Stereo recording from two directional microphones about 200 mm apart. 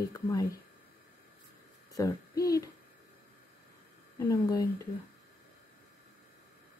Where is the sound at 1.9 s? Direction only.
20° left (ahead or behind).